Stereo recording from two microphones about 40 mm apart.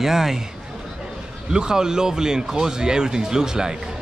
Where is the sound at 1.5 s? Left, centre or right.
Centre.